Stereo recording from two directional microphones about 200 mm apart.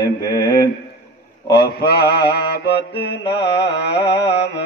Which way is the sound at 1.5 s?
50° left (ahead or behind).